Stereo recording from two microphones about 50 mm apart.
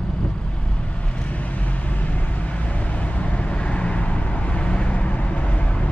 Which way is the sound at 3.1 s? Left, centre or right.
Left.